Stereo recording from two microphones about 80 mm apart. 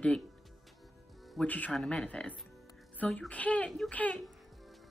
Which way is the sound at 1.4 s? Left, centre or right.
Centre.